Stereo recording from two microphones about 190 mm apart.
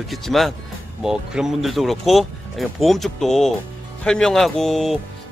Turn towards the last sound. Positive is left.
turn(degrees=0)  # may be behind; listen again after turning